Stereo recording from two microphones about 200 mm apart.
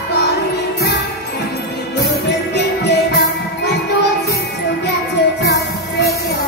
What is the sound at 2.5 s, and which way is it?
Music, 55° left (ahead or behind).